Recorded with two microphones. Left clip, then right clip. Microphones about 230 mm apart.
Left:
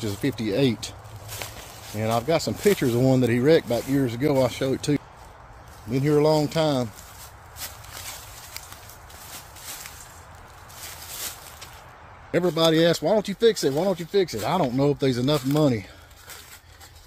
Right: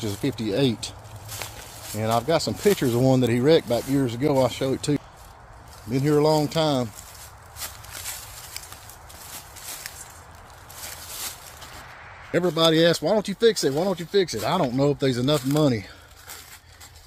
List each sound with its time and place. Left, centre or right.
0.0 s speech: centre
1.4 s walk: centre
2.0 s speech: centre
12.3 s speech: centre